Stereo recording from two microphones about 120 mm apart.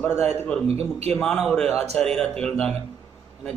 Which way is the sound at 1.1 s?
Centre (ahead or behind).